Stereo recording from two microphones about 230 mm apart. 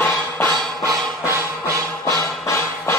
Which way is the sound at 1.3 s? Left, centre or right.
Centre.